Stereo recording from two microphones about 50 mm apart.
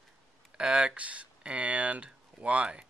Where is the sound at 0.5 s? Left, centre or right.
Right.